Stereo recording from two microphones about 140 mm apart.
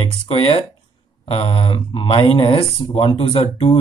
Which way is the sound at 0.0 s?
45° left (ahead or behind).